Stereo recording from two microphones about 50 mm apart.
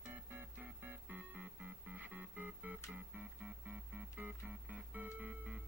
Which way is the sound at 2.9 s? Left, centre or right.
Right.